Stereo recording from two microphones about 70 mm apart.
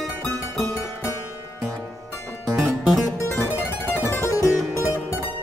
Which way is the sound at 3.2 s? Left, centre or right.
Left.